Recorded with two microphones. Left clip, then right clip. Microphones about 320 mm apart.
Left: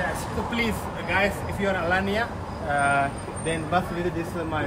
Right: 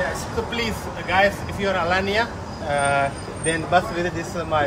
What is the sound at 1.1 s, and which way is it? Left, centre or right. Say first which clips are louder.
Speech: right 5 dB; centre.